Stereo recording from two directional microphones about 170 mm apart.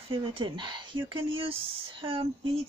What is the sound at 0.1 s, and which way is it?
Speech, 30° right (ahead or behind).